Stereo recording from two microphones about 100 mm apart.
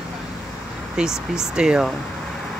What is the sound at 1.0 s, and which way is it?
Speech, 5° right (ahead or behind).